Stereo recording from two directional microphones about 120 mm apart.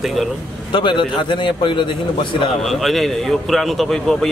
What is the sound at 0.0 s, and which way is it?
Speech, centre (ahead or behind).